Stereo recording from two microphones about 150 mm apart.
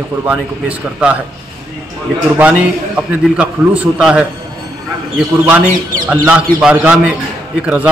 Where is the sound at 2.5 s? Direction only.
5° right (ahead or behind).